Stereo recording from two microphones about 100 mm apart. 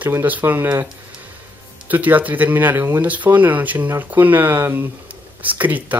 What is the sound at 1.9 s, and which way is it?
Speech, 15° right (ahead or behind).